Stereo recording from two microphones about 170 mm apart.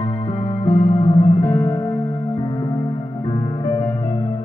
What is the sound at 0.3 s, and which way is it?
Music, 30° left (ahead or behind).